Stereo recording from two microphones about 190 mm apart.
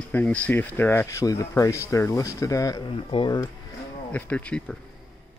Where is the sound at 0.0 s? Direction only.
10° left (ahead or behind); by 3.3 s 25° left (ahead or behind).